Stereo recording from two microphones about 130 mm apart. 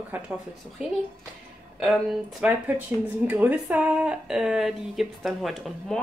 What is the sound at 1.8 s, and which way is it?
Speech, 5° right (ahead or behind).